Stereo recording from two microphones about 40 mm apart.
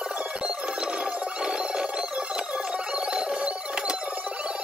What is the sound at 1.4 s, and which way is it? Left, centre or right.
Telephone bell ringing, right.